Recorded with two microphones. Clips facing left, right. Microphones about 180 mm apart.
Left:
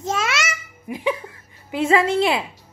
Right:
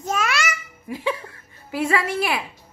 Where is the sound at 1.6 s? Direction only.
20° left (ahead or behind).